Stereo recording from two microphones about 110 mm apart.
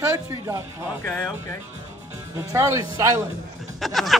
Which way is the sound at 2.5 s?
30° right (ahead or behind).